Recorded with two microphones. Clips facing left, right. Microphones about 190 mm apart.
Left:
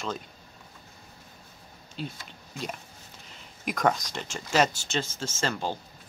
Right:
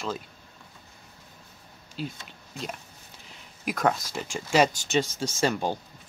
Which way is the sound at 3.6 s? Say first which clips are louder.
Even; 5° right (ahead or behind).